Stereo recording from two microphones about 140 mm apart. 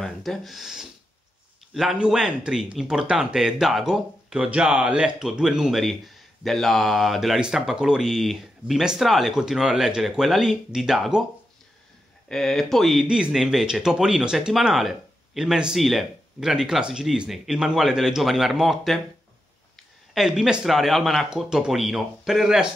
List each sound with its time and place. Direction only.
0.0 s speech: centre (ahead or behind)
12.3 s speech: centre (ahead or behind)
20.2 s speech: 5° right (ahead or behind)